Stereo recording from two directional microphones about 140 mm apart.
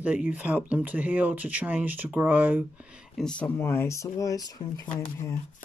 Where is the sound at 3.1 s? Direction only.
5° left (ahead or behind); by 4.9 s 25° left (ahead or behind).